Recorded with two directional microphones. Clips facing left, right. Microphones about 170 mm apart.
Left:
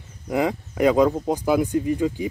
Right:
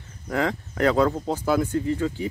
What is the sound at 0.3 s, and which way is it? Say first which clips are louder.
A child's voice: left 3 dB; 15° left (ahead or behind).